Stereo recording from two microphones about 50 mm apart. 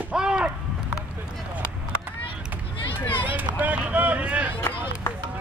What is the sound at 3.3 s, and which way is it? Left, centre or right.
Run, right.